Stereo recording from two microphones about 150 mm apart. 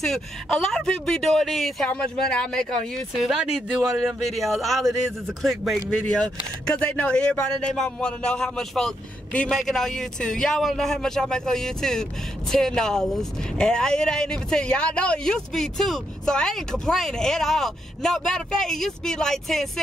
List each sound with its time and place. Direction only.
0.0 s speech: 5° left (ahead or behind)